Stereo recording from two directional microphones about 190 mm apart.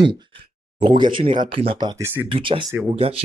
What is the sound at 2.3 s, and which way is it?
Speech, 25° right (ahead or behind).